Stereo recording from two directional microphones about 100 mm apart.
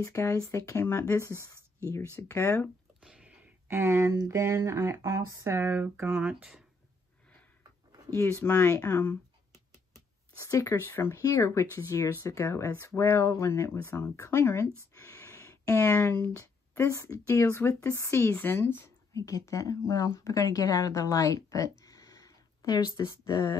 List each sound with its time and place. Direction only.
0.0 s speech: 30° left (ahead or behind)
3.0 s a sound: 10° right (ahead or behind)
3.6 s speech: 25° right (ahead or behind)
6.1 s speech: 5° right (ahead or behind)
8.1 s speech: 25° left (ahead or behind)
9.9 s speech: 30° left (ahead or behind)
15.0 s a sound: 30° left (ahead or behind)
17.3 s speech: 25° left (ahead or behind)